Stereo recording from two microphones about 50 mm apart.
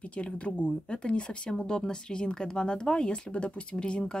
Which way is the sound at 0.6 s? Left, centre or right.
Left.